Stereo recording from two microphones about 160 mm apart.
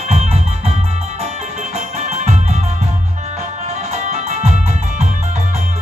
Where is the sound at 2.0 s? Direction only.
45° right (ahead or behind).